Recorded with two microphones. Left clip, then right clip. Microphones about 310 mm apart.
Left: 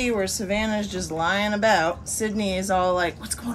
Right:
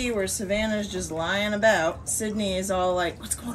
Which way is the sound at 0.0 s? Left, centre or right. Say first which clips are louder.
Left 3 dB; left.